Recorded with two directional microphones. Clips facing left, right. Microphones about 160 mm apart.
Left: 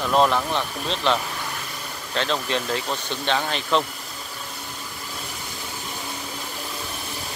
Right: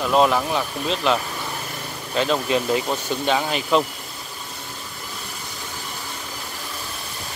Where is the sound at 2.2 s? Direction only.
10° right (ahead or behind).